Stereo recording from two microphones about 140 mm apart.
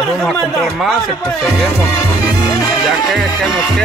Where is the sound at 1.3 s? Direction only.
20° left (ahead or behind).